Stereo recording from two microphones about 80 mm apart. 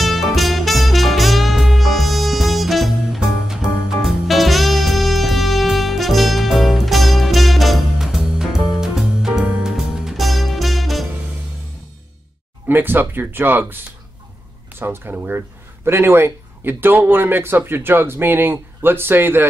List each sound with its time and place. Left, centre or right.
0.0 s music: centre
12.6 s speech: right